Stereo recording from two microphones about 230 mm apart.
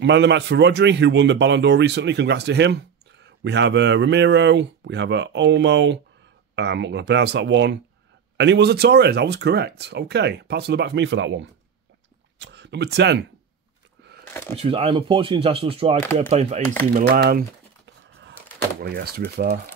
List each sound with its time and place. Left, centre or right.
0.0 s speech: right
14.5 s speech: right
16.9 s a sound: right
18.8 s speech: right